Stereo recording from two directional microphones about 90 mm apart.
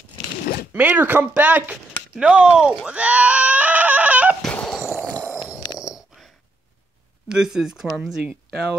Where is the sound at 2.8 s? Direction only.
15° right (ahead or behind).